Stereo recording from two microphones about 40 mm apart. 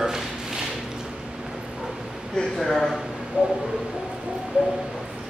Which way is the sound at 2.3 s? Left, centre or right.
Centre.